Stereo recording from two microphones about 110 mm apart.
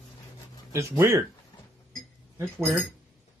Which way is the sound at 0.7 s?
25° right (ahead or behind).